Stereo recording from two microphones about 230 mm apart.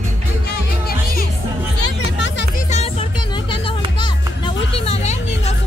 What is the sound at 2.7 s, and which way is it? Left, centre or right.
Music, left.